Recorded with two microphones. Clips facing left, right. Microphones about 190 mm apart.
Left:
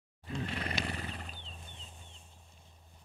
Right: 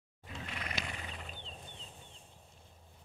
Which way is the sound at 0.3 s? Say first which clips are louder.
Left 6 dB; 35° left (ahead or behind).